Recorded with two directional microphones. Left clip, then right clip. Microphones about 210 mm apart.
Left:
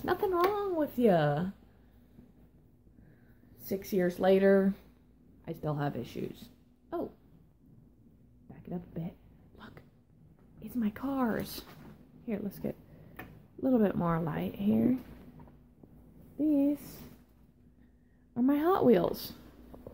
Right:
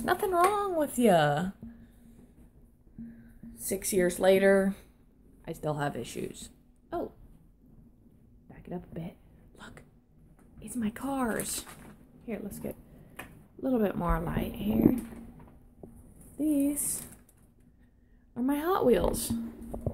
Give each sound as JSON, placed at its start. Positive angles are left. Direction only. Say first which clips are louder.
{"t": 0.0, "sound": "speech", "louder": "right 3 dB", "side_deg": 0}
{"t": 3.6, "sound": "speech", "louder": "right 3 dB", "side_deg": -5}
{"t": 8.5, "sound": "a sound", "louder": "right 2 dB", "side_deg": 0}
{"t": 10.6, "sound": "speech", "louder": "even", "side_deg": 10}
{"t": 18.3, "sound": "a woman's voice", "louder": "left 1 dB", "side_deg": 15}